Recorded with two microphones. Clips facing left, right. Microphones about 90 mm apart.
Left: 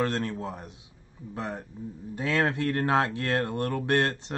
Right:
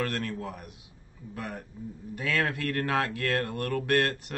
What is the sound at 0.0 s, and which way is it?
Speech, 25° left (ahead or behind).